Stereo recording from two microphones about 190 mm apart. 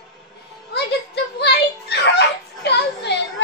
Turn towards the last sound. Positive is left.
turn(degrees=60)  # may be behind; listen again after turning